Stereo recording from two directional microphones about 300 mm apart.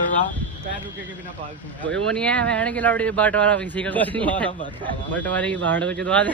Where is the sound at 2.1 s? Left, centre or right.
Centre.